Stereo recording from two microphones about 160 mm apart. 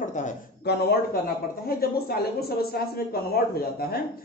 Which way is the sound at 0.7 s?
90° left.